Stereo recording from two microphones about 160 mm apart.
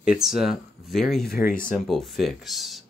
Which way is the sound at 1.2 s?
70° left (ahead or behind).